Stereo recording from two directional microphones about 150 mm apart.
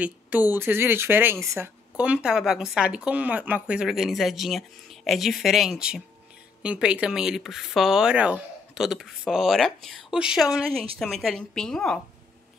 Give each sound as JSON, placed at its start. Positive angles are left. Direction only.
{"t": 0.0, "sound": "speech", "side_deg": -10}